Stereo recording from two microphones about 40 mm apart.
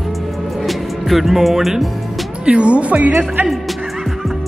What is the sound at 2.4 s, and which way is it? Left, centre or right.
Speech, right.